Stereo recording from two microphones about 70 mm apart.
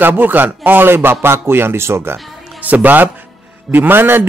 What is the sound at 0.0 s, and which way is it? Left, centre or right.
A man's voice, right.